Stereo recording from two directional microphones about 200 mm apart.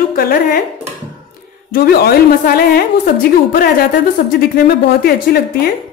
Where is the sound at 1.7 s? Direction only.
50° left (ahead or behind).